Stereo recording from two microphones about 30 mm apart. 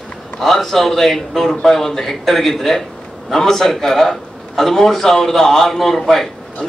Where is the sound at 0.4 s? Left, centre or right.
Centre.